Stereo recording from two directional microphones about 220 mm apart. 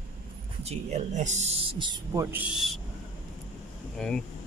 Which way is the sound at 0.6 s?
30° right (ahead or behind).